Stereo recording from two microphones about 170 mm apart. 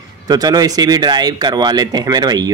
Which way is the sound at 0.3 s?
25° right (ahead or behind).